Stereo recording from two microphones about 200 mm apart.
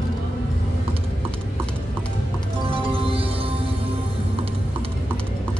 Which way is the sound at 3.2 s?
25° right (ahead or behind).